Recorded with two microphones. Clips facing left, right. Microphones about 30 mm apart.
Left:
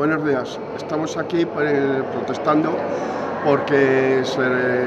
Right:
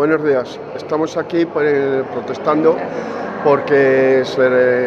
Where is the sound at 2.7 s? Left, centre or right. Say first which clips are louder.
Right 2 dB; right.